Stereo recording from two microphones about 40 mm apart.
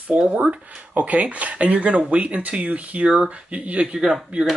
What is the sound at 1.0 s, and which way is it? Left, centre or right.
Speech, right.